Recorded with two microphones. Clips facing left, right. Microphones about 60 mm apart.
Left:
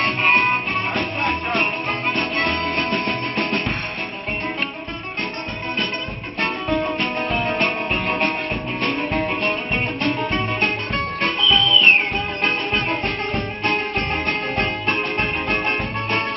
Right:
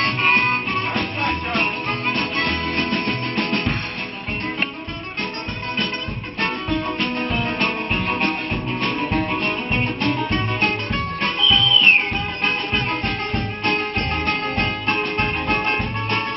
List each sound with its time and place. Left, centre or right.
0.0 s music: centre
6.4 s music: centre
13.0 s music: centre